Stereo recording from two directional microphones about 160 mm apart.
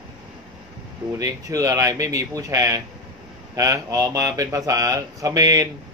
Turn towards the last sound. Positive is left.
turn(degrees=-20)  # may be behind; listen again after turning